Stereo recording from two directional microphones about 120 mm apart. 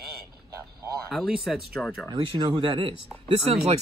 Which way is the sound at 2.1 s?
35° right (ahead or behind).